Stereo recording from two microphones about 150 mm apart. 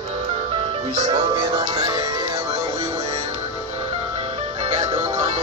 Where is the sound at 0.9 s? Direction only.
45° right (ahead or behind).